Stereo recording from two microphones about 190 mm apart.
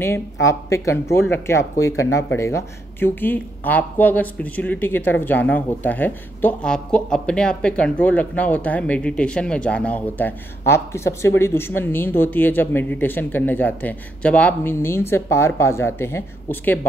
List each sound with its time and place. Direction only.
0.0 s speech: 15° left (ahead or behind)